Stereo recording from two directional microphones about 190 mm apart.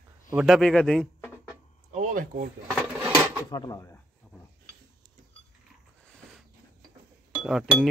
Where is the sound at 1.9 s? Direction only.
40° right (ahead or behind).